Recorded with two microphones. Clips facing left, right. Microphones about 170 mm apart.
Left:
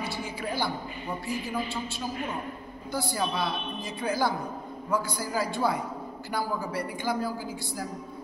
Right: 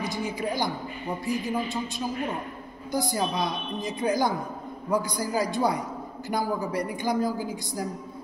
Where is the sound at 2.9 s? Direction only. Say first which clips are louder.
Right 3 dB; 15° right (ahead or behind).